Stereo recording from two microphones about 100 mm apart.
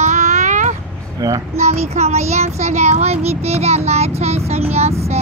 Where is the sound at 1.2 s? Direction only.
35° right (ahead or behind).